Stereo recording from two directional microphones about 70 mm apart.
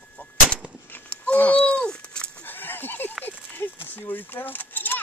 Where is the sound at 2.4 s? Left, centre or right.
Left.